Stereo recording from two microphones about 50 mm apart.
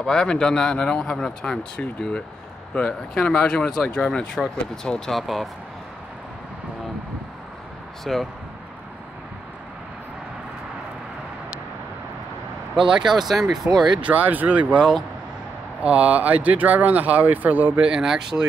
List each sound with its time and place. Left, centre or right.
0.0 s a man's voice: centre
5.1 s speech: centre
8.0 s speech: centre
12.7 s speech: centre
14.0 s speech: right
14.7 s speech: centre
15.8 s speech: right
17.8 s speech: centre